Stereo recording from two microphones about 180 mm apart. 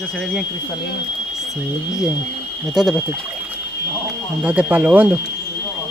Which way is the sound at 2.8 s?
Centre (ahead or behind).